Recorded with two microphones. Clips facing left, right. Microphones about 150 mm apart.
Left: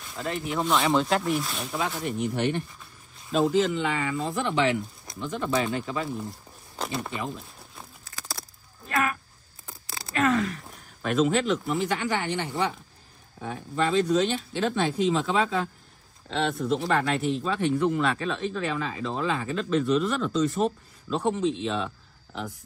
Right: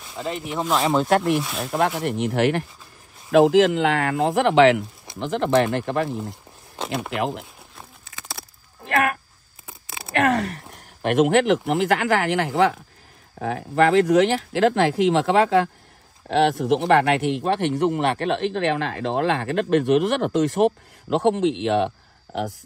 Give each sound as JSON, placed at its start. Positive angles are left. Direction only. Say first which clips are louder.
{"t": 0.1, "sound": "speech", "louder": "right 2 dB", "side_deg": -20}
{"t": 0.6, "sound": "speech", "louder": "right 3 dB", "side_deg": 0}
{"t": 1.9, "sound": "speech", "louder": "right 5 dB", "side_deg": -70}
{"t": 7.1, "sound": "speech", "louder": "right 8 dB", "side_deg": -90}
{"t": 8.1, "sound": "a sound", "louder": "right 1 dB", "side_deg": -15}
{"t": 8.8, "sound": "a sound", "louder": "right 5 dB", "side_deg": -60}
{"t": 10.3, "sound": "a sound", "louder": "right 2 dB", "side_deg": -45}
{"t": 10.7, "sound": "speech", "louder": "right 6 dB", "side_deg": -80}
{"t": 13.4, "sound": "speech", "louder": "right 8 dB", "side_deg": -80}